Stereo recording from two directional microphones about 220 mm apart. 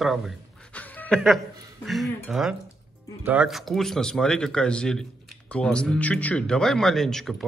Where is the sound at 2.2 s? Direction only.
Centre (ahead or behind).